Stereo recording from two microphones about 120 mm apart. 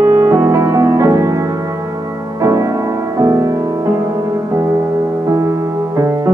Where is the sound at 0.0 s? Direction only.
20° right (ahead or behind).